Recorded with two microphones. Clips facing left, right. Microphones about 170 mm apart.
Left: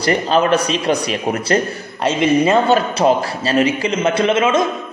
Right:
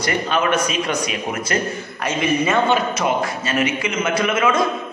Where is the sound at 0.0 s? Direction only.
35° left (ahead or behind).